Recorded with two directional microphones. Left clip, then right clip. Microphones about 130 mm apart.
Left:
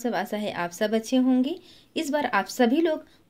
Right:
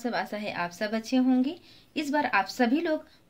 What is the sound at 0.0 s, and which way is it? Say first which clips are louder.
A woman's voice: left 3 dB; 30° left (ahead or behind).